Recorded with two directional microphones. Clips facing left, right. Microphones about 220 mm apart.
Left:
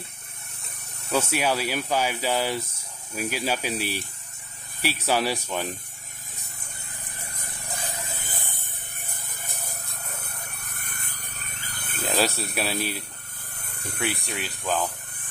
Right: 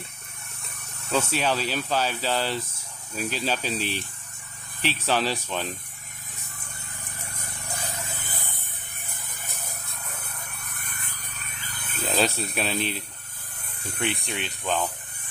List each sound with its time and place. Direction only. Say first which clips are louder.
1.1 s speech: left 1 dB; 10° left (ahead or behind)
10.9 s a sound: even; 40° left (ahead or behind)
12.0 s speech: even; 5° left (ahead or behind)